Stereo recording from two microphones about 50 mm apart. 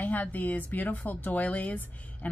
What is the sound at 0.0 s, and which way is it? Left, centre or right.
Speech, left.